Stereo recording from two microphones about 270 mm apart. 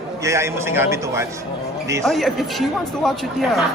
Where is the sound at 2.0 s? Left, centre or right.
Centre.